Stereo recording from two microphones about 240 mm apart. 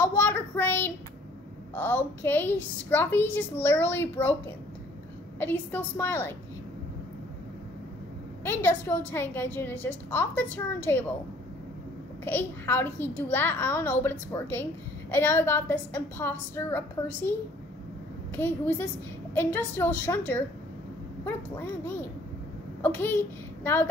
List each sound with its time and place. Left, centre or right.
0.0 s child singing: centre
1.8 s a child's voice: centre
5.4 s a child's voice: centre
8.5 s a child's voice: centre
12.3 s a child's voice: centre
22.8 s a child's voice: centre